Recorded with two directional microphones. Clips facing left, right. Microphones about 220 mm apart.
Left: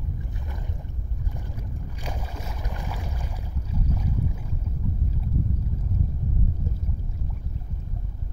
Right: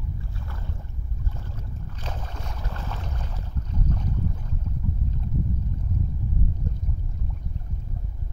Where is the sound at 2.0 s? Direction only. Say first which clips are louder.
Left 1 dB; 10° left (ahead or behind).